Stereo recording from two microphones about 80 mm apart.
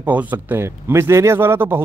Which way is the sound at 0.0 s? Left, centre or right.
Right.